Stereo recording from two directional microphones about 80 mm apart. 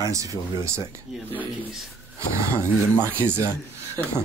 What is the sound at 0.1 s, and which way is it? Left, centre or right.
Speech, right.